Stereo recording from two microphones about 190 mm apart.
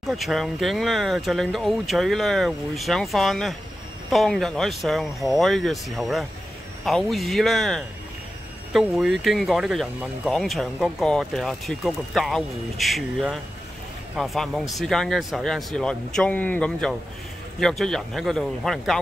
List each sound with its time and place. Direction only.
0.0 s speech: centre (ahead or behind)